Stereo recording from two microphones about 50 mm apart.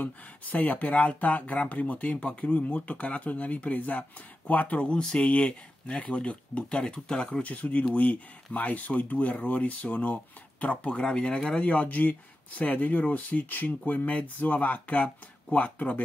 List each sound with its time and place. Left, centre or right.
0.0 s speech: left; by 7.2 s centre
7.4 s speech: left